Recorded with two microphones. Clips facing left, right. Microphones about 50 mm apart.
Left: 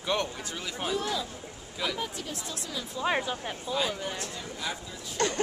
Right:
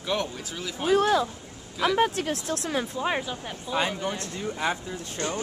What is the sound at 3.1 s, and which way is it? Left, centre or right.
Speech, centre.